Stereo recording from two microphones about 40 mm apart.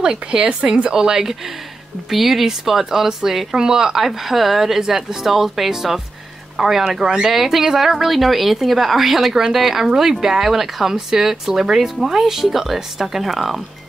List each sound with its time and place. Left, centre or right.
0.0 s a woman's voice: right
7.0 s speech: centre
7.2 s a woman's voice: centre